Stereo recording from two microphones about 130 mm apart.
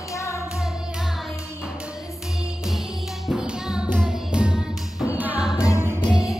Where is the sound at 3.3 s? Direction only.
5° right (ahead or behind).